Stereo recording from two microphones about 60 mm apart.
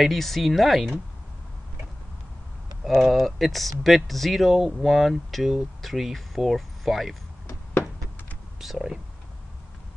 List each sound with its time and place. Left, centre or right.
0.0 s speech: centre
2.8 s speech: centre
8.5 s speech: centre